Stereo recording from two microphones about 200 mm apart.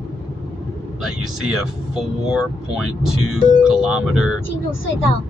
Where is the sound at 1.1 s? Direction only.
90° right.